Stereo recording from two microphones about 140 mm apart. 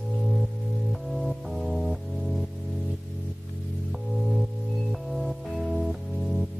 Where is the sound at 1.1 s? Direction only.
Centre (ahead or behind).